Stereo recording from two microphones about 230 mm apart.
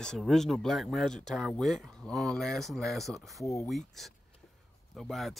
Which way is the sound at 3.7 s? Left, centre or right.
Centre.